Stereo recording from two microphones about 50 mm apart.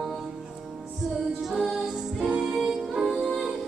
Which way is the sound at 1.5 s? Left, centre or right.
Centre.